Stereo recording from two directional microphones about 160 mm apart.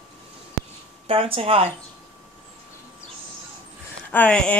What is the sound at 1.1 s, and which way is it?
Speech, 35° right (ahead or behind).